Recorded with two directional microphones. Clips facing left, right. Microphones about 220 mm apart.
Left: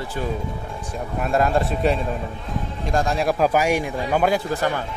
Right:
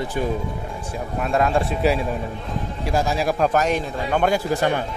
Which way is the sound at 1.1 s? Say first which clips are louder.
Even; centre (ahead or behind).